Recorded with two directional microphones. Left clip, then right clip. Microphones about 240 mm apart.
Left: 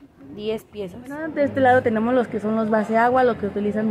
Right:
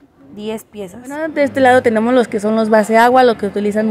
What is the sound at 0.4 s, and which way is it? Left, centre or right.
Speech, right.